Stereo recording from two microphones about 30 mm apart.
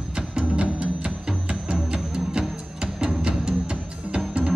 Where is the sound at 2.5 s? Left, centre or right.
Right.